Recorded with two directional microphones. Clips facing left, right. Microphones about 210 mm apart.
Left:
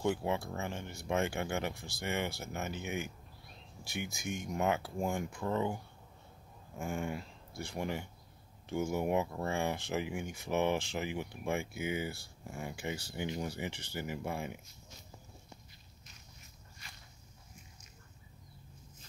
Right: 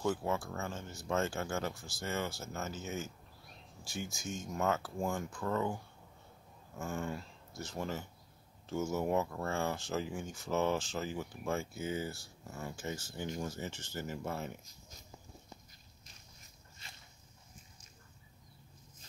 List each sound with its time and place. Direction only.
0.0 s speech: 15° left (ahead or behind)
4.1 s speech: 60° left (ahead or behind)
4.5 s speech: 15° left (ahead or behind)
6.8 s speech: 15° left (ahead or behind)